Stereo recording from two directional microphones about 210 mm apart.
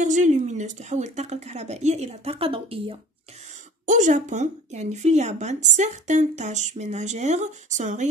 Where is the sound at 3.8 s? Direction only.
35° right (ahead or behind).